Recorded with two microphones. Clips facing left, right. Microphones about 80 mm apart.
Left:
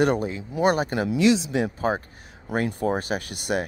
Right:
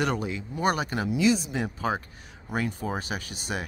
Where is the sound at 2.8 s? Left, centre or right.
Left.